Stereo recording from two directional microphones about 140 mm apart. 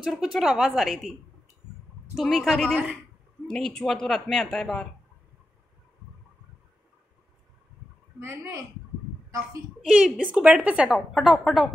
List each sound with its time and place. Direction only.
0.0 s a woman's voice: 5° right (ahead or behind)
2.1 s a woman's voice: centre (ahead or behind)
8.2 s speech: 20° right (ahead or behind)
9.8 s a woman's voice: 5° right (ahead or behind)